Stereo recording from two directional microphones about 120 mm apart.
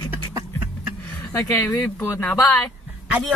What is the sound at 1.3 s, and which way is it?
Speech, 25° left (ahead or behind).